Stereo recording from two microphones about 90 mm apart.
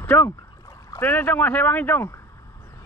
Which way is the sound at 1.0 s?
20° left (ahead or behind).